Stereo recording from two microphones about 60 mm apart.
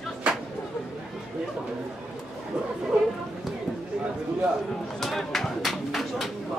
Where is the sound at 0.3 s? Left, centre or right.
Centre.